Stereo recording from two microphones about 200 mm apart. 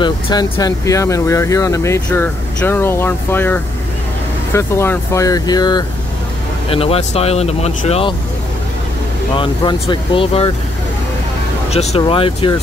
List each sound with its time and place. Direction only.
0.0 s speech: 20° left (ahead or behind)
9.4 s speech: 25° left (ahead or behind)
11.7 s speech: 30° left (ahead or behind)